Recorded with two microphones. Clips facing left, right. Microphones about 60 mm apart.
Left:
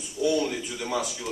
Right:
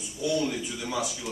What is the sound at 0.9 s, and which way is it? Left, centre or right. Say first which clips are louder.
Speech: left 2 dB; centre.